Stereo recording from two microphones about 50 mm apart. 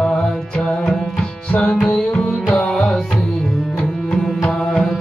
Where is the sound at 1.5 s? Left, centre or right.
Left.